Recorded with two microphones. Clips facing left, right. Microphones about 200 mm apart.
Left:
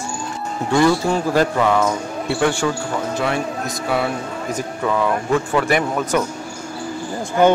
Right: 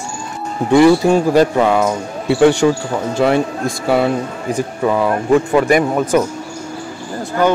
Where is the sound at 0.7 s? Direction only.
15° right (ahead or behind).